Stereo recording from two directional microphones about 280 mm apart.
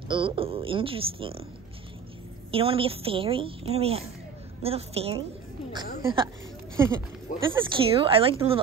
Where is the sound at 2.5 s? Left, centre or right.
Centre.